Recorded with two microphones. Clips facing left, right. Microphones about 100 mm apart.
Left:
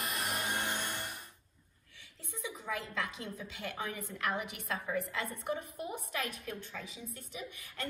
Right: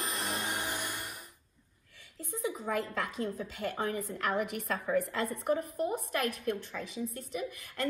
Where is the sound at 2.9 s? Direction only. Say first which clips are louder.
Right 5 dB; 45° right (ahead or behind).